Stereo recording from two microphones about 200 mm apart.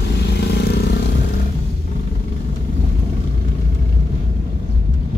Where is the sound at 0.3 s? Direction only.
55° left (ahead or behind).